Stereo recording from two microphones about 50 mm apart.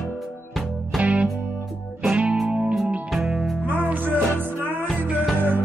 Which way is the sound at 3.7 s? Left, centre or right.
Right.